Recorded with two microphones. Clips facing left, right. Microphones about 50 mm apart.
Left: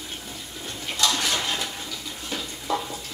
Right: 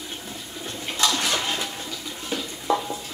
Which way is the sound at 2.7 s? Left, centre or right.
Right.